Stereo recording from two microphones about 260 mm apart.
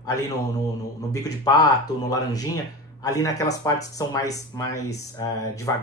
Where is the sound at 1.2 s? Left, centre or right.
Centre.